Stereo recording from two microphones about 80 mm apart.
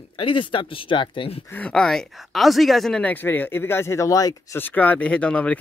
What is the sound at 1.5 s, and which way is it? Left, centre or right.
Speech, centre.